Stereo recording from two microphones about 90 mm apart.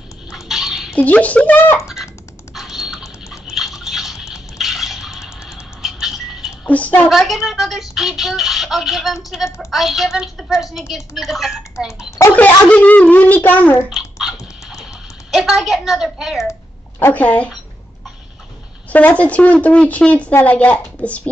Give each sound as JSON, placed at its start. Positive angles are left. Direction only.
{"t": 0.3, "sound": "a sound", "side_deg": -5}
{"t": 0.9, "sound": "speech", "side_deg": 15}
{"t": 1.8, "sound": "speech", "side_deg": -5}
{"t": 2.5, "sound": "a sound", "side_deg": -5}
{"t": 6.7, "sound": "a woman's voice", "side_deg": 20}
{"t": 7.1, "sound": "speech", "side_deg": -5}
{"t": 12.4, "sound": "speech", "side_deg": 15}
{"t": 13.8, "sound": "bathtub", "side_deg": -5}
{"t": 15.3, "sound": "speech", "side_deg": -5}
{"t": 17.1, "sound": "speech", "side_deg": 15}
{"t": 18.9, "sound": "speech", "side_deg": 15}